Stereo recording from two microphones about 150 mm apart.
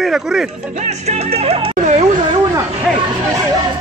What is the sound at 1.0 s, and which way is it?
Speech, 45° right (ahead or behind).